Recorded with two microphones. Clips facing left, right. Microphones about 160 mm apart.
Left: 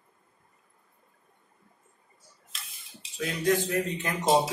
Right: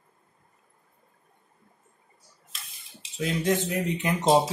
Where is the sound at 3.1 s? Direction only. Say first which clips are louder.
Right 1 dB; 25° right (ahead or behind).